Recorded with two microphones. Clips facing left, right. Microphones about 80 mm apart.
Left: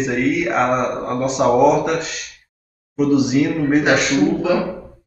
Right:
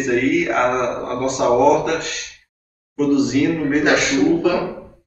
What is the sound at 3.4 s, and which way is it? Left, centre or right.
Speech, centre.